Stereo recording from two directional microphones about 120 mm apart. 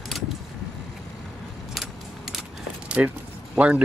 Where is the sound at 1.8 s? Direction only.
Centre (ahead or behind).